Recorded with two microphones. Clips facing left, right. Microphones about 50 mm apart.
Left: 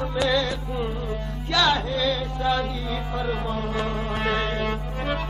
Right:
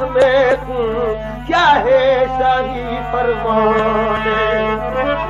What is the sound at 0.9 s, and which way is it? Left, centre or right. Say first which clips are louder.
Speech: right 12 dB; right.